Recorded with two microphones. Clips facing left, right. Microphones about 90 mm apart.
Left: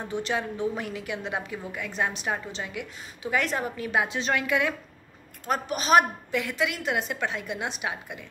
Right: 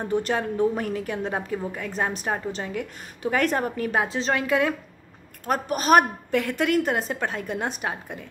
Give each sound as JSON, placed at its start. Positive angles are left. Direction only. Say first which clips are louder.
{"t": 0.1, "sound": "a woman's voice", "louder": "right 4 dB", "side_deg": -50}
{"t": 5.5, "sound": "a woman's voice", "louder": "right 3 dB", "side_deg": -45}